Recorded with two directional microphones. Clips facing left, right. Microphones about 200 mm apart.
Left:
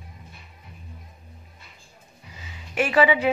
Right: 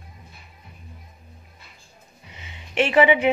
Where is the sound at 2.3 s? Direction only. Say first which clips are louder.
Left 1 dB; 25° right (ahead or behind).